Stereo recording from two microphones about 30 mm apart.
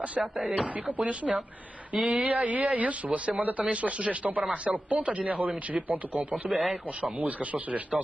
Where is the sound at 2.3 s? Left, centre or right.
Right.